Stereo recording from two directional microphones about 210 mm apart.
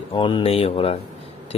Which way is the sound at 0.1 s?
25° left (ahead or behind).